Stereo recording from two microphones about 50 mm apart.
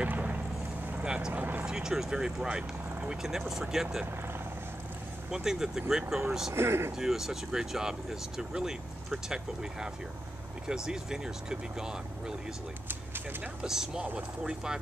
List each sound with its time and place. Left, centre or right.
0.0 s boat: right
1.0 s vehicle: centre
1.3 s vehicle: right
1.7 s speech: centre
5.3 s speech: centre
6.5 s speech: right
7.0 s speech: centre
13.6 s speech: centre